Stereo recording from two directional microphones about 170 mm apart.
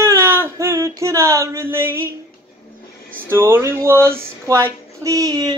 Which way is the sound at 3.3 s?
15° right (ahead or behind).